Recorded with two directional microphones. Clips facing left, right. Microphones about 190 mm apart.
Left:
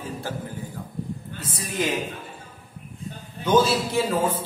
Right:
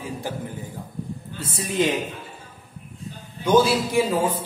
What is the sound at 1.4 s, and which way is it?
Speech, 25° right (ahead or behind).